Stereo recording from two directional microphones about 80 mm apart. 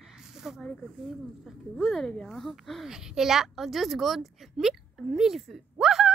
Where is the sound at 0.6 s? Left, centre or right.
Centre.